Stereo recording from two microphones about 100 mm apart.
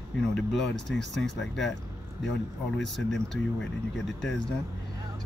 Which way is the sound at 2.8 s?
5° left (ahead or behind).